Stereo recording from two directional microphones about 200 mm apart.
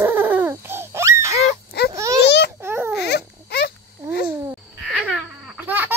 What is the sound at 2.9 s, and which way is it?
Babbling, 55° left (ahead or behind).